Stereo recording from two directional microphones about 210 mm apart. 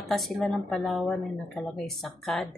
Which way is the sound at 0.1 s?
Centre (ahead or behind).